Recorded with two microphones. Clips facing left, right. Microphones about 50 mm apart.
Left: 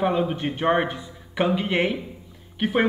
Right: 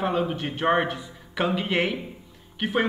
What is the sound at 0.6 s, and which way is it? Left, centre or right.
Speech, centre.